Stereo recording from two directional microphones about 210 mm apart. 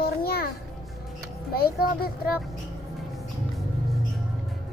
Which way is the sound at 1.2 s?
45° left (ahead or behind).